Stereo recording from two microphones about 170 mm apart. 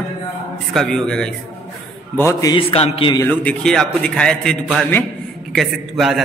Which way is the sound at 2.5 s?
35° left (ahead or behind).